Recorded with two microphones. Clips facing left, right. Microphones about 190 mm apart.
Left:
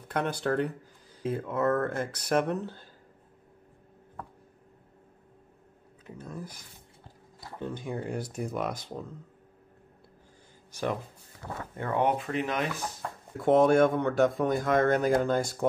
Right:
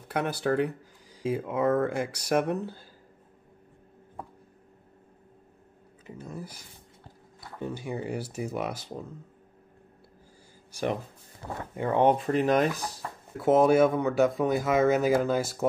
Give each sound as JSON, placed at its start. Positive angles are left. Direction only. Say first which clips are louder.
{"t": 0.1, "sound": "speech", "louder": "right 1 dB", "side_deg": -10}
{"t": 6.0, "sound": "speech", "louder": "right 1 dB", "side_deg": -5}
{"t": 7.6, "sound": "speech", "louder": "right 1 dB", "side_deg": -5}
{"t": 10.7, "sound": "speech", "louder": "right 2 dB", "side_deg": -10}
{"t": 12.0, "sound": "speech", "louder": "right 5 dB", "side_deg": -40}
{"t": 12.8, "sound": "speech", "louder": "even", "side_deg": 0}